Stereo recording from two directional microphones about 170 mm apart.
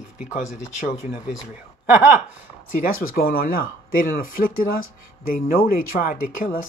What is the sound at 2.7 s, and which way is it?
Speech, 55° left (ahead or behind).